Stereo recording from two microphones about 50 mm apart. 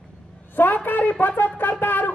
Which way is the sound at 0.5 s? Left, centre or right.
Left.